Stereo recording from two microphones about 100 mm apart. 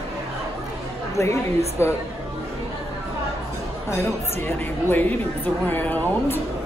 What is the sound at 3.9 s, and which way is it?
A woman's voice, 25° left (ahead or behind).